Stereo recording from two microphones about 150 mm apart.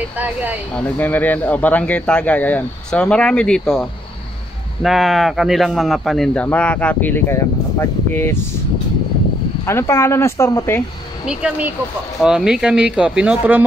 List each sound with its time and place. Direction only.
0.2 s speech: 10° right (ahead or behind)
0.7 s a man's voice: 10° left (ahead or behind)
4.8 s a man's voice: centre (ahead or behind); by 8.4 s 15° left (ahead or behind)
9.7 s a man's voice: 20° left (ahead or behind)
11.2 s speech: 10° right (ahead or behind)